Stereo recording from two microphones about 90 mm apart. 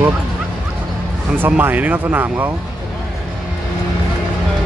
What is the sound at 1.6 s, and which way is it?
Speech, 20° right (ahead or behind).